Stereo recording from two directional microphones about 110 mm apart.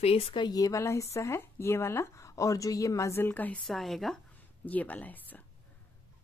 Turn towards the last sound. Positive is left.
turn(degrees=15)  # may be behind; listen again after turning